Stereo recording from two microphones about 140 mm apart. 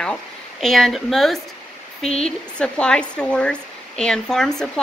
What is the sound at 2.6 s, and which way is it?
Speech, 5° left (ahead or behind).